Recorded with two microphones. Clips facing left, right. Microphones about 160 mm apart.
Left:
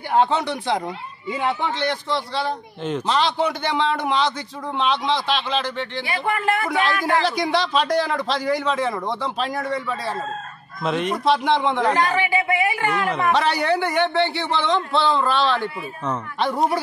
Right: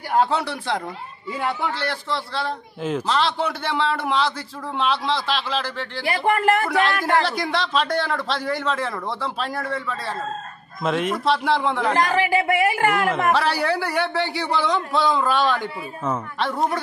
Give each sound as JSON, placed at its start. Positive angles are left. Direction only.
{"t": 0.1, "sound": "a man's voice", "side_deg": -5}
{"t": 6.0, "sound": "a man's voice", "side_deg": -40}
{"t": 6.7, "sound": "a man's voice", "side_deg": 0}
{"t": 12.3, "sound": "a man's voice", "side_deg": -40}
{"t": 13.3, "sound": "a man's voice", "side_deg": -5}
{"t": 16.3, "sound": "a man's voice", "side_deg": 0}